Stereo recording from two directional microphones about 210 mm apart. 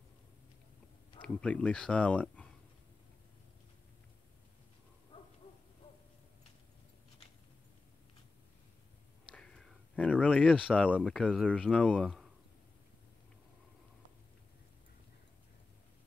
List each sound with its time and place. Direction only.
1.2 s speech: 5° left (ahead or behind)
9.3 s speech: 5° left (ahead or behind)